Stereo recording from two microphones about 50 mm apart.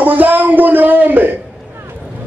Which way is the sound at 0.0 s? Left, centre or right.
Right.